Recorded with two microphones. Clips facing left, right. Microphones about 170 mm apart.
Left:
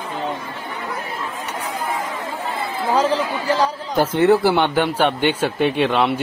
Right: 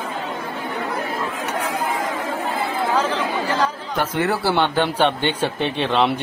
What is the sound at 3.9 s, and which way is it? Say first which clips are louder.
Speech: left 7 dB; 25° left (ahead or behind).